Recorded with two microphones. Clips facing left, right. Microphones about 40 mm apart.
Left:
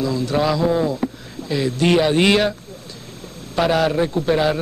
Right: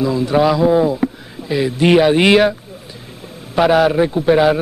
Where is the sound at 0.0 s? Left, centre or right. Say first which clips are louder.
Right 5 dB; centre.